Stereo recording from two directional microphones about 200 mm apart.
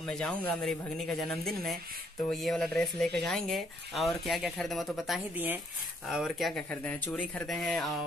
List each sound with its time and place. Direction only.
0.0 s speech: 5° left (ahead or behind)